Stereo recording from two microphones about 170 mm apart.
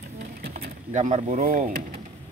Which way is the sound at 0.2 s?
65° right (ahead or behind).